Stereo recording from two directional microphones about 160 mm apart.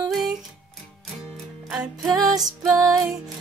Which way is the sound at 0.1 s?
Centre (ahead or behind).